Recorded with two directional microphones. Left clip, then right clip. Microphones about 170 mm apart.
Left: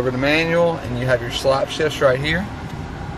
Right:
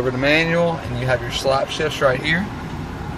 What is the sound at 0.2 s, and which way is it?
Speech, 5° left (ahead or behind).